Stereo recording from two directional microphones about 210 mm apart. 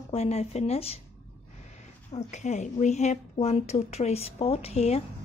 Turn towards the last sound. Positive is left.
turn(degrees=30)  # may be behind; listen again after turning